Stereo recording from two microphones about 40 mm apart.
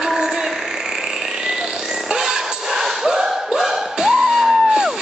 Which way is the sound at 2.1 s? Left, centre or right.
Centre.